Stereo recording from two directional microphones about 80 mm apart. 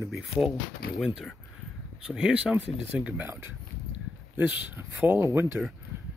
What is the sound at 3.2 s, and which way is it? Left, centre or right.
Speech, right.